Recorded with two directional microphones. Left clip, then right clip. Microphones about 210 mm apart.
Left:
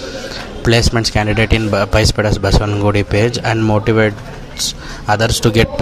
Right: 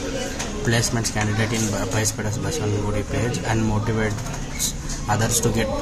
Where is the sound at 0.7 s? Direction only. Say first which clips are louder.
Left 10 dB; 40° left (ahead or behind).